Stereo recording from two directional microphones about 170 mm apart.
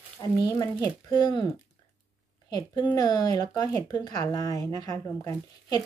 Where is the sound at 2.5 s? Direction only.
25° left (ahead or behind).